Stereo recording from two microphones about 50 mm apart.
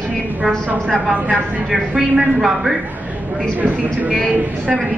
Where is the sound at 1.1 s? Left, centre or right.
Right.